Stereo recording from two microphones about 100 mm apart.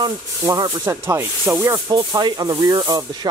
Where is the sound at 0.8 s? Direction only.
25° right (ahead or behind).